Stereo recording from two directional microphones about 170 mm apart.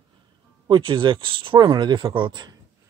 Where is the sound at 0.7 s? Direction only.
30° right (ahead or behind).